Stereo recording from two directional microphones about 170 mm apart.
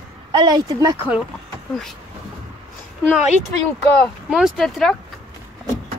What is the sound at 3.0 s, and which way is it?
Speech, 5° right (ahead or behind).